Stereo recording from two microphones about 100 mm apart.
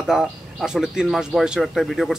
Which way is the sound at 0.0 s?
5° right (ahead or behind).